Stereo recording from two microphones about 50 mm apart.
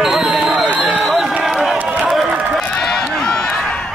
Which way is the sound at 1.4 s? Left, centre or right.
Centre.